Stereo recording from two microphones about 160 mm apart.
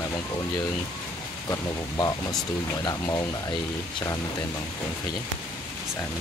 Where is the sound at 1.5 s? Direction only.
20° left (ahead or behind).